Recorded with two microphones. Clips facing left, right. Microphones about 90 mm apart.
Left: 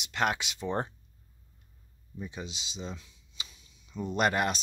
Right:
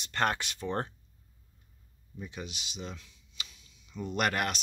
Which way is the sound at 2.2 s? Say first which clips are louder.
Left 1 dB; 25° left (ahead or behind).